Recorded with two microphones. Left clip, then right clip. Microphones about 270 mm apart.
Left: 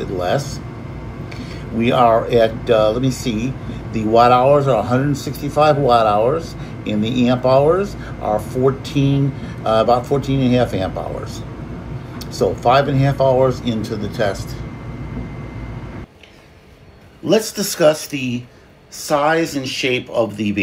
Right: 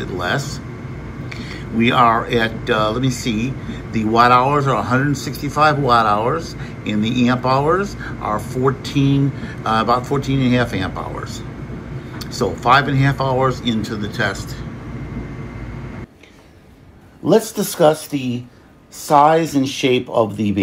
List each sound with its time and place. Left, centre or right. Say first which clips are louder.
0.0 s speech: left 2 dB; centre
1.8 s speech: even; centre
12.4 s speech: even; centre
17.6 s speech: even; centre
18.1 s speech: even; centre
19.0 s speech: right 4 dB; right